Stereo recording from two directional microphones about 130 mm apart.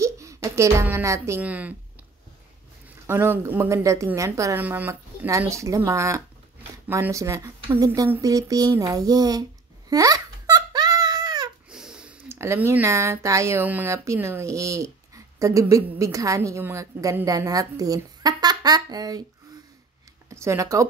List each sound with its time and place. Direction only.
0.0 s music: 25° right (ahead or behind)
0.8 s a woman's voice: 20° right (ahead or behind)
1.4 s speech: 10° right (ahead or behind)
3.1 s a woman's voice: 20° right (ahead or behind)
4.6 s a woman's voice: 15° right (ahead or behind)
9.8 s a sound: 30° right (ahead or behind)
11.7 s a sound: 5° right (ahead or behind)
12.3 s a woman's voice: 20° right (ahead or behind)
20.2 s speech: 25° right (ahead or behind)